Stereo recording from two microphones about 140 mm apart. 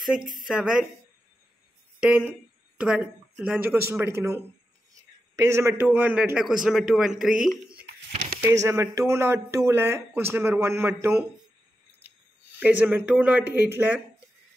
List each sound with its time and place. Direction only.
0.0 s a man's voice: 5° right (ahead or behind)
2.0 s a man's voice: 10° right (ahead or behind)
8.4 s speech: 20° right (ahead or behind)
12.5 s speech: 10° right (ahead or behind)